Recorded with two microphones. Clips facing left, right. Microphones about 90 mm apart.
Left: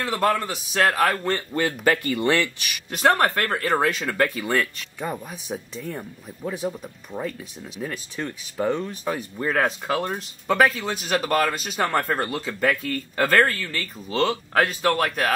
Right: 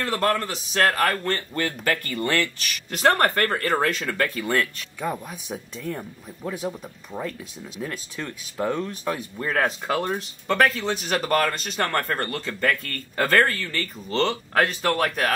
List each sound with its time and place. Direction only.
0.0 s speech: 5° left (ahead or behind)
1.2 s speech: 15° left (ahead or behind)
2.9 s speech: centre (ahead or behind)